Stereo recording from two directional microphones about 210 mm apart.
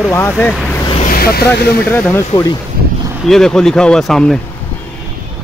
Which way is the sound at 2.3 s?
15° left (ahead or behind).